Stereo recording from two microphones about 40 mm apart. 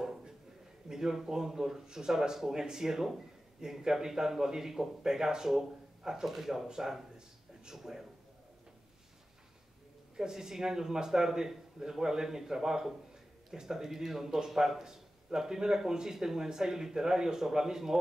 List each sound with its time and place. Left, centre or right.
0.0 s a sound: centre
0.8 s a man's voice: centre
10.1 s a man's voice: centre